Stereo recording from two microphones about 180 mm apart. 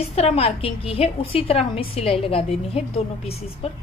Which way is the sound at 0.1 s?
35° left (ahead or behind).